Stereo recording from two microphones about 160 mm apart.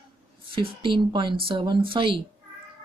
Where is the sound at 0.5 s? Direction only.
30° right (ahead or behind).